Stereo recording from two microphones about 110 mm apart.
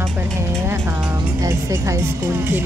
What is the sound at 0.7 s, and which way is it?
Music, 20° right (ahead or behind).